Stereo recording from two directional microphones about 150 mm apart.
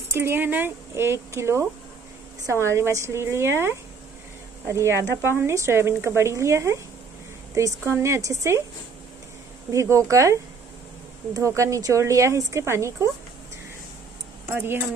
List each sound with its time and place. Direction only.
0.1 s speech: 15° right (ahead or behind)
9.7 s speech: 20° right (ahead or behind)
14.5 s speech: 15° right (ahead or behind)